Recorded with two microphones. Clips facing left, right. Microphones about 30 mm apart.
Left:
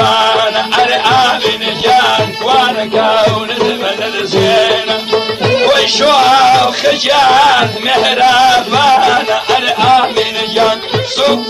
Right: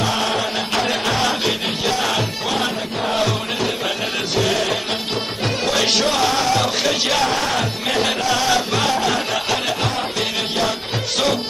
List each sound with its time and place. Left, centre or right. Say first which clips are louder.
0.0 s music: left 11 dB; left
1.4 s music: left 8 dB; left
4.6 s music: left 10 dB; left
5.8 s music: left 9 dB; left
7.2 s music: left 13 dB; left
9.7 s music: left 13 dB; left